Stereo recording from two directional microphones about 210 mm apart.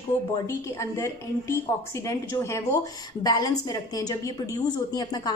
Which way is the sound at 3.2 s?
20° left (ahead or behind).